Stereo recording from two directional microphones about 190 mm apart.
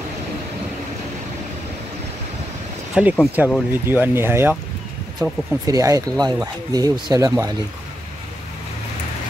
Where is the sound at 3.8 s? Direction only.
10° right (ahead or behind).